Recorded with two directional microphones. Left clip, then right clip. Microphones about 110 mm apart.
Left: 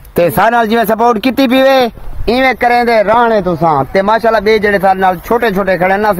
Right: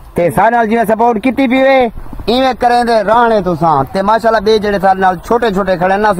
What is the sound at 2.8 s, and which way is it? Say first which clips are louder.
Speech: left 1 dB; centre (ahead or behind).